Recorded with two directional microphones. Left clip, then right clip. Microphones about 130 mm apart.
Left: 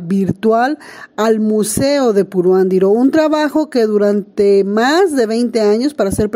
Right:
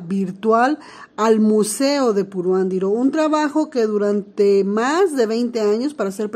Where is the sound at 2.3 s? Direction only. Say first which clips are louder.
Left 7 dB; 55° left (ahead or behind).